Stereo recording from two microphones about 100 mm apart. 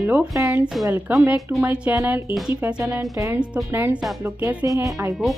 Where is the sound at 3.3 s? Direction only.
10° right (ahead or behind).